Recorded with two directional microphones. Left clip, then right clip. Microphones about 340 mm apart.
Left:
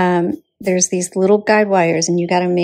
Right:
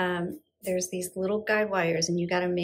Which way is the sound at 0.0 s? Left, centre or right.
Centre.